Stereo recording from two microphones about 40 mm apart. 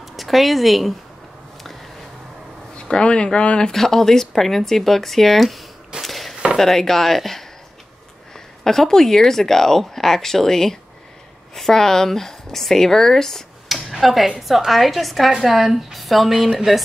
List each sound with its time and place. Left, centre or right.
0.1 s speech: centre
2.8 s speech: left
3.7 s speech: centre
6.0 s a sound: centre
6.6 s speech: centre
8.6 s speech: centre
13.7 s a sound: centre
14.7 s speech: centre